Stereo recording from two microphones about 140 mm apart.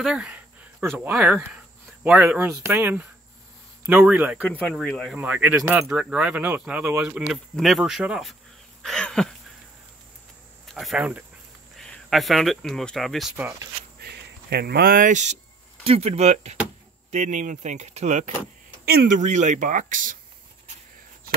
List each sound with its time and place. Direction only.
0.0 s a sound: 5° right (ahead or behind)
0.9 s speech: 10° right (ahead or behind)
4.5 s speech: 10° left (ahead or behind)
5.1 s speech: 10° right (ahead or behind)
10.7 s speech: centre (ahead or behind)
13.4 s speech: 20° right (ahead or behind)
14.8 s speech: 85° right; by 15.3 s 60° right (ahead or behind)
15.8 s speech: 45° right (ahead or behind)
18.9 s speech: 80° right